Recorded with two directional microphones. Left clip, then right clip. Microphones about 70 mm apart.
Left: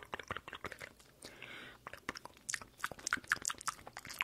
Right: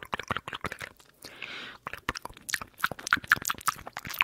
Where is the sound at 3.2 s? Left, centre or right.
Right.